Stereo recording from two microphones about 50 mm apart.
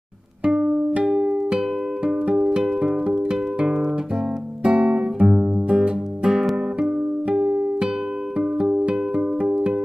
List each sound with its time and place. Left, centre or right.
0.5 s music: right
4.6 s music: right
7.4 s music: right
8.4 s music: centre